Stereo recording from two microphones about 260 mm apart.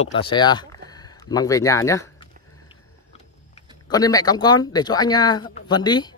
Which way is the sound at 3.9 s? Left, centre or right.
Centre.